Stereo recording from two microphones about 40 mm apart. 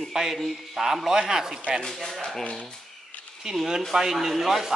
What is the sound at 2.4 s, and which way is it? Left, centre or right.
Speech, left.